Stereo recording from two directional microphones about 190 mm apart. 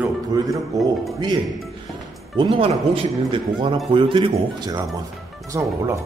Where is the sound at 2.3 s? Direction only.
30° right (ahead or behind).